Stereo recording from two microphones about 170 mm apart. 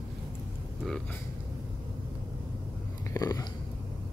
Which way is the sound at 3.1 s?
20° left (ahead or behind).